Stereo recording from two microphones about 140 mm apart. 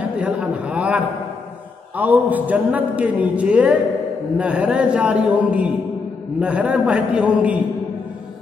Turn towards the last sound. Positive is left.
turn(degrees=-10)  # may be behind; listen again after turning